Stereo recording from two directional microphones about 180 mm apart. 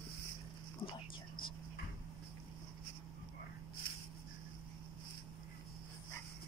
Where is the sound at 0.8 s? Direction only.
20° left (ahead or behind).